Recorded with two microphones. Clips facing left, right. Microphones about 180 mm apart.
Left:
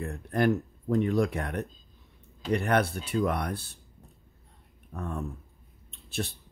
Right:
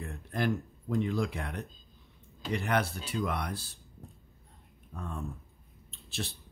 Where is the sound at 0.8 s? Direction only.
55° left (ahead or behind).